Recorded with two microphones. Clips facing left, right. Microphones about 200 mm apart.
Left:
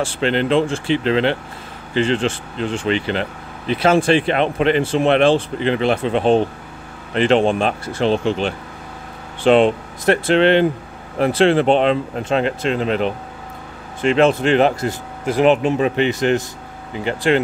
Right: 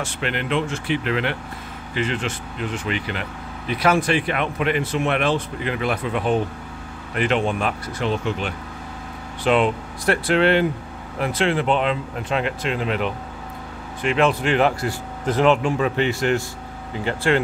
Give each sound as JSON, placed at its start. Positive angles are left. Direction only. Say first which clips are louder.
{"t": 0.0, "sound": "speech", "louder": "left 8 dB", "side_deg": 30}